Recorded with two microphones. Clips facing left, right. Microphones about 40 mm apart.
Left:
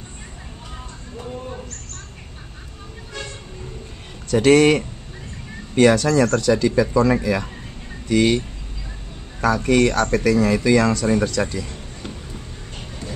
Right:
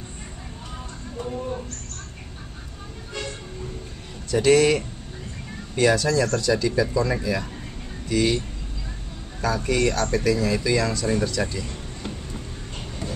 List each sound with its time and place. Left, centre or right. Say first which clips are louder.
1.1 s a sound: right 2 dB; centre
4.3 s speech: left 4 dB; left
9.4 s speech: left 6 dB; left